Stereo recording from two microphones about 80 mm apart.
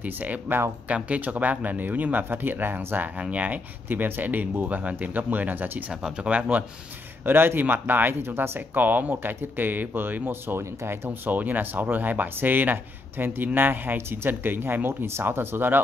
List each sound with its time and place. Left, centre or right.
0.0 s speech: right
7.2 s speech: right
11.1 s speech: right